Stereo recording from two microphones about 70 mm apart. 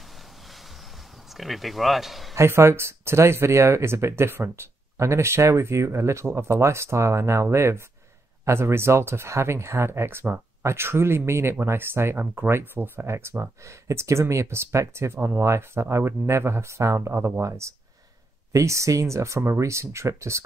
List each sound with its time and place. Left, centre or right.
1.3 s speech: centre
2.3 s speech: right